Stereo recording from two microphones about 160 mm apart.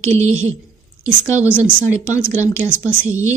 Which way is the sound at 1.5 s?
10° left (ahead or behind).